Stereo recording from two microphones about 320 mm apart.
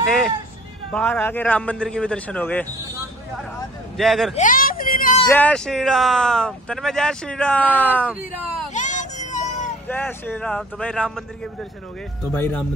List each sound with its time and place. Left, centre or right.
0.0 s hubbub: centre
0.9 s speech: centre
3.9 s speech: centre
4.4 s a sound: left
5.3 s speech: centre
8.7 s a sound: left
9.8 s speech: centre
12.3 s speech: centre